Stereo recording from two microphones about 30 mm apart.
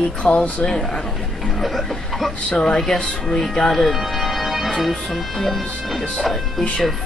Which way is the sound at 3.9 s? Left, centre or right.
Centre.